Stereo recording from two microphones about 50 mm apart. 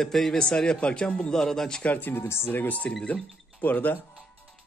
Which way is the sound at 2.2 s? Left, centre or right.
Left.